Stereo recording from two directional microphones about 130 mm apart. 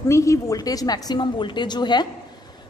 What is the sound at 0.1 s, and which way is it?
A woman's voice, 25° left (ahead or behind).